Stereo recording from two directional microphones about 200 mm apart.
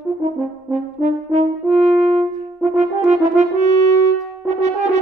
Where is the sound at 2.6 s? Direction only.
35° right (ahead or behind).